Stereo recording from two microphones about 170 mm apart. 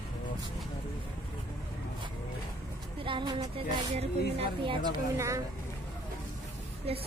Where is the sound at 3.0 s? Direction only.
30° right (ahead or behind).